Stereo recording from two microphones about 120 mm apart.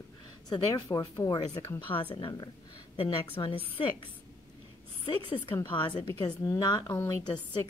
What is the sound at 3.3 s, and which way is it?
Speech, 50° left (ahead or behind).